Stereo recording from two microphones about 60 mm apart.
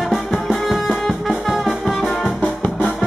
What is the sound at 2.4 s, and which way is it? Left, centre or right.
Music, centre.